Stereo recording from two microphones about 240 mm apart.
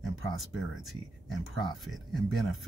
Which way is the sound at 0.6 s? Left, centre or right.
Centre.